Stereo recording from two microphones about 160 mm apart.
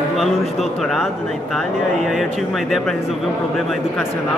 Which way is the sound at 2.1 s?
Centre (ahead or behind).